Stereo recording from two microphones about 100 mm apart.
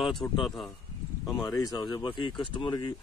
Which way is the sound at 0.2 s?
30° left (ahead or behind).